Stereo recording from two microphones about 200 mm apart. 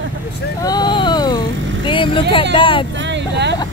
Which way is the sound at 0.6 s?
20° left (ahead or behind).